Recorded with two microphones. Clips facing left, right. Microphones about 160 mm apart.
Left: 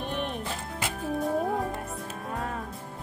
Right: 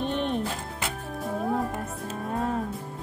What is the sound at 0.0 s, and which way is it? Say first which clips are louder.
Music: right 5 dB; 5° left (ahead or behind).